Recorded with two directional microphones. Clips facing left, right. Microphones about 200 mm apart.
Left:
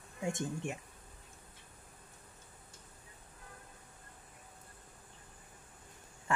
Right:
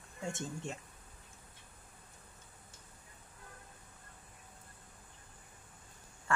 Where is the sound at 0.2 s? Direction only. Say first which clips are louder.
Left 4 dB; 15° left (ahead or behind).